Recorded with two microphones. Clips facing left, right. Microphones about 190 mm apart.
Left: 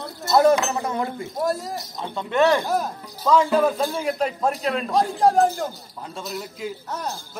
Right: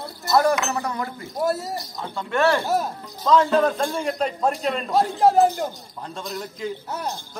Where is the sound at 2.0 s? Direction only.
20° left (ahead or behind).